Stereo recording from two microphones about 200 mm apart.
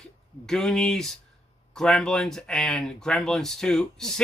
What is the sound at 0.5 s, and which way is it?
Speech, centre (ahead or behind).